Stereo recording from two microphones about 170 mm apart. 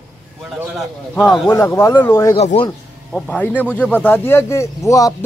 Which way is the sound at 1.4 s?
15° left (ahead or behind).